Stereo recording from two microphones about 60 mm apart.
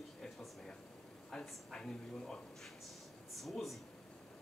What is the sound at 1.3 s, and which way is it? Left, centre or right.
Speech, centre.